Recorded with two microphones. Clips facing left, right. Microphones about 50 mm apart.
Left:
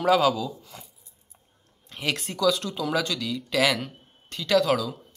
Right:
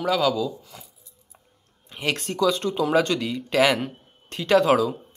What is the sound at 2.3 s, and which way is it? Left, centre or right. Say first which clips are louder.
Speech: right 2 dB; right.